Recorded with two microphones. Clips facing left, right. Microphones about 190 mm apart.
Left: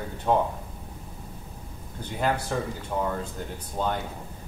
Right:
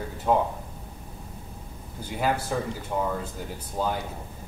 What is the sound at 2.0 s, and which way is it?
Speech, 5° right (ahead or behind).